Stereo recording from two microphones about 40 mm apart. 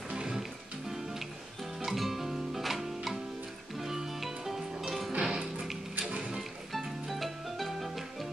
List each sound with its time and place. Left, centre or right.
0.1 s music: centre
1.9 s music: centre